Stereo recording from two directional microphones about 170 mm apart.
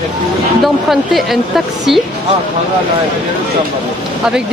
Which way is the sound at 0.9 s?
Centre (ahead or behind).